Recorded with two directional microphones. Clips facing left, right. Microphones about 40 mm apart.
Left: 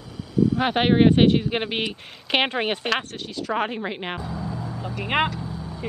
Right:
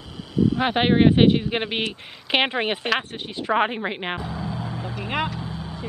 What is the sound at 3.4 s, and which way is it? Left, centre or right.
Speech, right.